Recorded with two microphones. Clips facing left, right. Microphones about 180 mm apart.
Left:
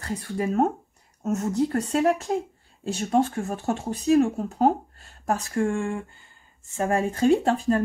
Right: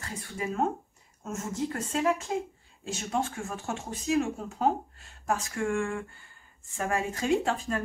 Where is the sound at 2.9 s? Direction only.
35° left (ahead or behind).